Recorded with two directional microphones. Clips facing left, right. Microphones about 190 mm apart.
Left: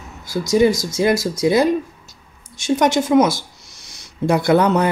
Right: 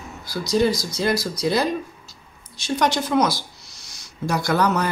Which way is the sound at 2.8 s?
20° left (ahead or behind).